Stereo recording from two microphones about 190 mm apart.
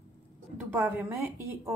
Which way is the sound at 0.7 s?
10° right (ahead or behind).